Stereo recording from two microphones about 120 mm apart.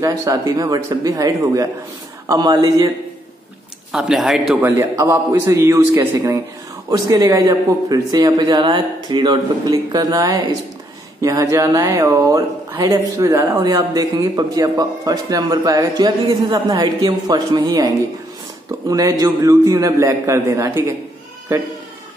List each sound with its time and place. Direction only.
0.0 s a man's voice: 30° right (ahead or behind)
3.9 s speech: 5° right (ahead or behind)
4.6 s a man's voice: 20° right (ahead or behind)
18.9 s speech: 30° right (ahead or behind)